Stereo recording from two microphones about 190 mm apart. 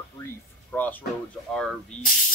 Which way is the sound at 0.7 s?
10° left (ahead or behind).